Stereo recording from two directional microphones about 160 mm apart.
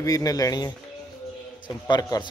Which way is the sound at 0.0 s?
20° left (ahead or behind).